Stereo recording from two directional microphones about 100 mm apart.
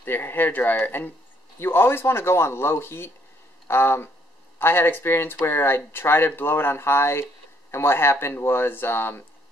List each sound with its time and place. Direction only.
0.0 s speech: 20° left (ahead or behind)